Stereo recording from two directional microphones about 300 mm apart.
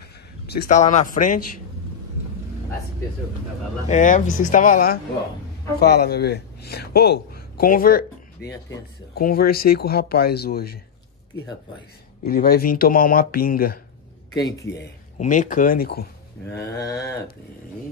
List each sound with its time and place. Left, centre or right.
0.5 s speech: left
3.9 s speech: left
12.3 s speech: left
14.3 s speech: centre
15.1 s speech: left